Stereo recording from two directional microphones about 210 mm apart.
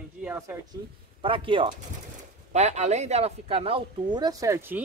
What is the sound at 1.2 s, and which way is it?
Speech, 25° right (ahead or behind).